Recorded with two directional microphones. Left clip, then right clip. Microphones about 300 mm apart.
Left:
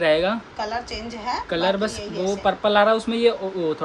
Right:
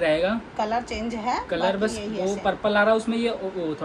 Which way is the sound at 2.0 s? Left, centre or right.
Centre.